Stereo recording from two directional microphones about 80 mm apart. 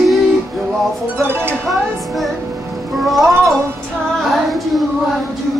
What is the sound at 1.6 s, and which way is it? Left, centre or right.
Speech, centre.